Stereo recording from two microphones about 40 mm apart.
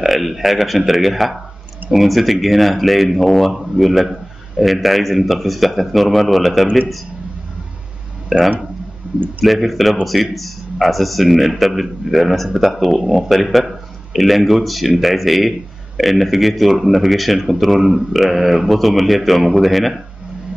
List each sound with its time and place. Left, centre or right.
0.0 s a man's voice: centre
8.3 s a man's voice: centre